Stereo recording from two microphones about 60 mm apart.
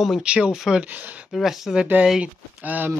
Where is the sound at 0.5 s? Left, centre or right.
Centre.